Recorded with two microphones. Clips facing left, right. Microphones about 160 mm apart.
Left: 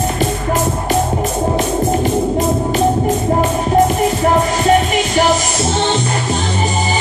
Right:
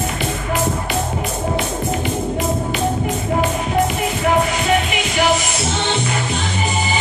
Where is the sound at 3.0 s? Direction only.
40° left (ahead or behind).